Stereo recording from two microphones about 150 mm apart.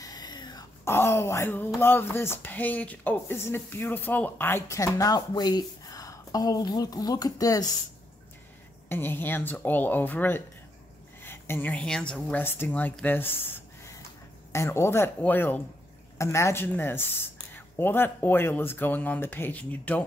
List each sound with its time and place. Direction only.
0.0 s whispering: 25° left (ahead or behind)
0.8 s speech: 15° left (ahead or behind)
8.8 s speech: 15° left (ahead or behind)
14.5 s speech: 20° left (ahead or behind)